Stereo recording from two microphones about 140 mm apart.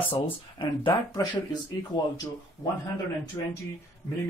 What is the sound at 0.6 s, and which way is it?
Speech, 35° left (ahead or behind).